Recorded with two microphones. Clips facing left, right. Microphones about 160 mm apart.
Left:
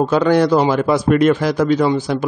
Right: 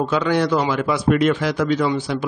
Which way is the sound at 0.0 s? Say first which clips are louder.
Left 5 dB; 45° left (ahead or behind).